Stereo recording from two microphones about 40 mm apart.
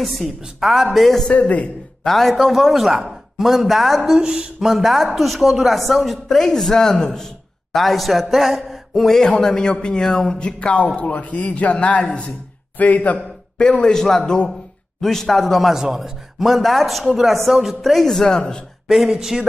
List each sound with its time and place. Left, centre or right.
0.2 s speech: centre
4.0 s speech: centre
7.7 s a sound: centre
9.4 s a man's voice: centre
10.4 s a sound: left
11.0 s a man's voice: left
12.7 s a man's voice: left
13.6 s a man's voice: centre
15.7 s speech: centre
17.9 s a man's voice: centre
18.9 s speech: centre